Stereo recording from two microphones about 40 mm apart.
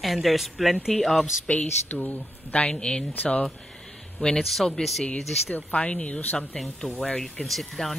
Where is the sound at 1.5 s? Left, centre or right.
Left.